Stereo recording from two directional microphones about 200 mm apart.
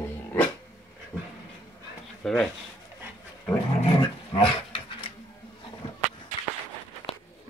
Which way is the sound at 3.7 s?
25° left (ahead or behind).